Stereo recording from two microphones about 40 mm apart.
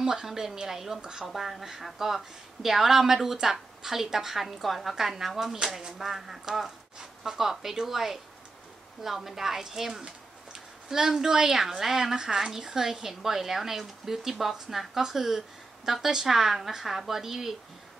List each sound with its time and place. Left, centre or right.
0.0 s speech: centre